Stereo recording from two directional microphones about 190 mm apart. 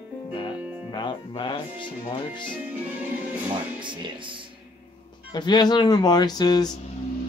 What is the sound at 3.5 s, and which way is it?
Speech, 25° right (ahead or behind).